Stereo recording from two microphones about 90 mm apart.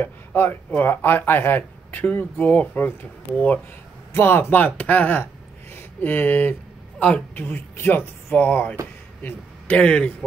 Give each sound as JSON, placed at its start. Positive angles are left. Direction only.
{"t": 0.0, "sound": "speech", "side_deg": 20}
{"t": 5.8, "sound": "a sound", "side_deg": 20}
{"t": 7.0, "sound": "speech", "side_deg": 15}